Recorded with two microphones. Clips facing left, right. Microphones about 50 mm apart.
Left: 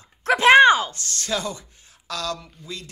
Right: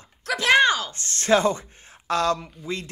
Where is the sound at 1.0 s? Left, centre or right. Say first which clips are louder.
Right 8 dB; right.